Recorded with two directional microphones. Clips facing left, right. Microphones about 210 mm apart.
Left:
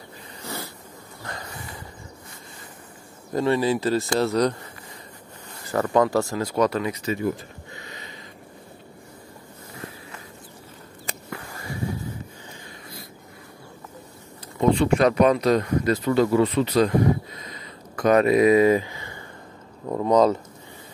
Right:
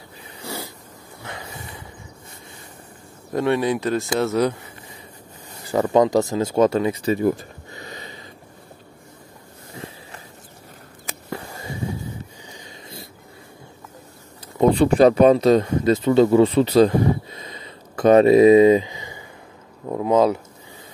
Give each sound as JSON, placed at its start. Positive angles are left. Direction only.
{"t": 0.4, "sound": "dog", "side_deg": -10}
{"t": 1.2, "sound": "a sound", "side_deg": -5}
{"t": 3.3, "sound": "speech", "side_deg": 0}
{"t": 5.7, "sound": "speech", "side_deg": -15}
{"t": 11.2, "sound": "a sound", "side_deg": -25}
{"t": 14.6, "sound": "speech", "side_deg": -35}
{"t": 19.9, "sound": "speech", "side_deg": -5}